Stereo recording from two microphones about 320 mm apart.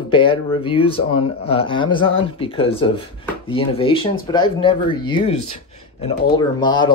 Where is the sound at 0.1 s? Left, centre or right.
Centre.